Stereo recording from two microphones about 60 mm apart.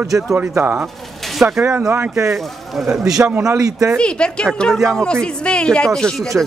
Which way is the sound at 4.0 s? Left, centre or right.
Centre.